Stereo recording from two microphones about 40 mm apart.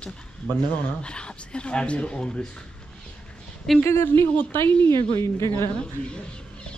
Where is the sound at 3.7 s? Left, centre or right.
Centre.